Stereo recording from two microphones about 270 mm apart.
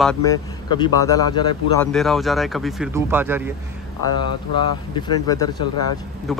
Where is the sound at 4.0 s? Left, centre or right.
Centre.